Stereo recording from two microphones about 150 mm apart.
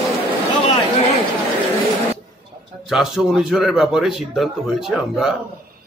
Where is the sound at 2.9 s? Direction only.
Centre (ahead or behind).